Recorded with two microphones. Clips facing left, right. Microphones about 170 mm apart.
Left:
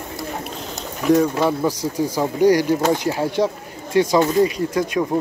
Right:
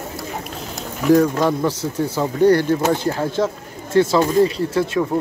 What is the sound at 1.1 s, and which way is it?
Speech, 5° left (ahead or behind).